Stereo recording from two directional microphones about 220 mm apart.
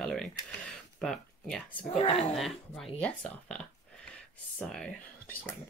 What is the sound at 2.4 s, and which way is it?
Speech, centre (ahead or behind).